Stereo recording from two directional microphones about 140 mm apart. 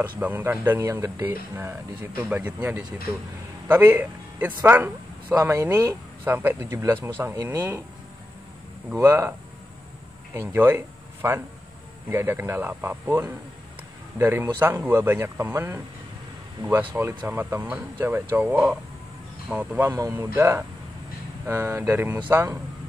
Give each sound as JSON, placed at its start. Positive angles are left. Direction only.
{"t": 0.2, "sound": "a man's voice", "side_deg": -15}
{"t": 8.9, "sound": "speech", "side_deg": -20}
{"t": 10.3, "sound": "speech", "side_deg": -15}